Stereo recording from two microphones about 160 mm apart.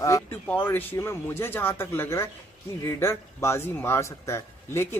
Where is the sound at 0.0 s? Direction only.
20° left (ahead or behind).